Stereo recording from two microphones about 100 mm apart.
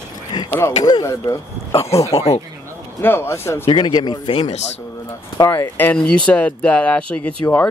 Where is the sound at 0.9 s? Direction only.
35° left (ahead or behind).